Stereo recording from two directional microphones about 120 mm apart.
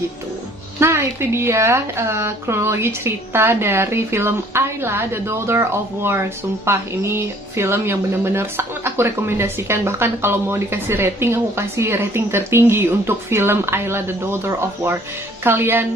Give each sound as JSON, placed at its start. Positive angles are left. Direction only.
{"t": 0.7, "sound": "a woman's voice", "side_deg": -20}